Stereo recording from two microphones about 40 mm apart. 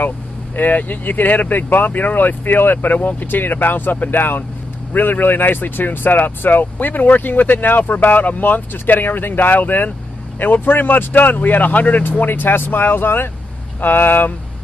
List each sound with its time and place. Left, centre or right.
0.6 s speech: left